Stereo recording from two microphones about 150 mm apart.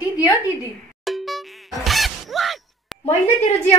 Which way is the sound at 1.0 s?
Centre (ahead or behind).